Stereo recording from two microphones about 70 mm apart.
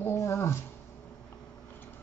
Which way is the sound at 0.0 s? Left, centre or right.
Left.